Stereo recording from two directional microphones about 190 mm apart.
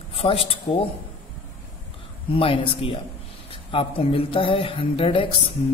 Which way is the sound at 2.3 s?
30° left (ahead or behind).